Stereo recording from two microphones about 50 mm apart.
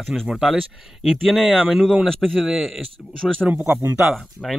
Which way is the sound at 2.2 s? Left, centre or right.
Centre.